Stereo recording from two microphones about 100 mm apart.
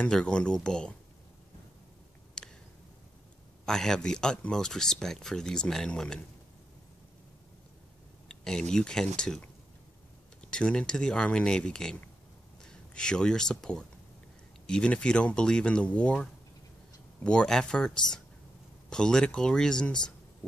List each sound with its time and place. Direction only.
0.0 s speech: 10° left (ahead or behind)
2.4 s a sound: 10° left (ahead or behind)
3.6 s speech: 5° left (ahead or behind)
8.3 s speech: 5° left (ahead or behind)